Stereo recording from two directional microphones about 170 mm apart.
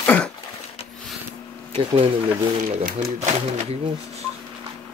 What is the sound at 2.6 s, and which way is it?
Speech, 55° right (ahead or behind).